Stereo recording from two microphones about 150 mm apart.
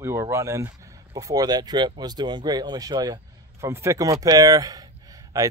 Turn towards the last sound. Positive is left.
turn(degrees=-20)  # may be behind; listen again after turning